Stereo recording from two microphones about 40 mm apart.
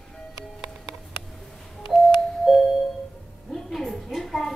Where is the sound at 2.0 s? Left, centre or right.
Centre.